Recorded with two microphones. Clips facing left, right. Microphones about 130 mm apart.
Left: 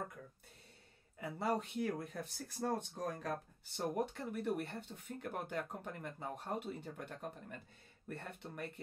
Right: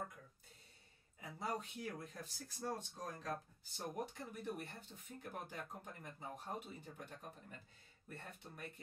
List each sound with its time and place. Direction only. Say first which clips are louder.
1.1 s speech: left 7 dB; 65° left (ahead or behind)